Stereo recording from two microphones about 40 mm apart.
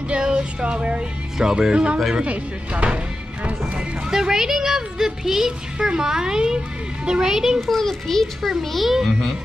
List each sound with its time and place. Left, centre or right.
0.1 s music: right
1.4 s speech: centre
4.1 s speech: centre
7.6 s a child's voice: centre
8.5 s a child's voice: centre